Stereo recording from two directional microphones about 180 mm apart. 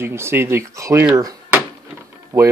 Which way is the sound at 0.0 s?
15° right (ahead or behind).